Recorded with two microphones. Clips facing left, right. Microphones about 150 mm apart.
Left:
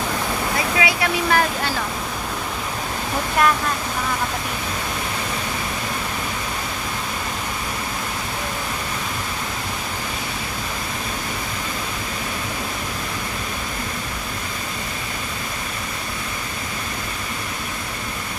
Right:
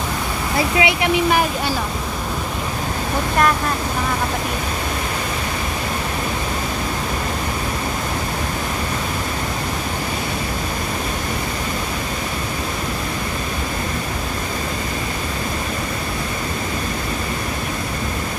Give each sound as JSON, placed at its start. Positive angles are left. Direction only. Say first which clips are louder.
{"t": 0.7, "sound": "speech", "louder": "right 5 dB", "side_deg": -20}